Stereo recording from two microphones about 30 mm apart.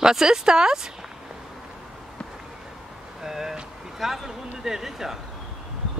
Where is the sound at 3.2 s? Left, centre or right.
Centre.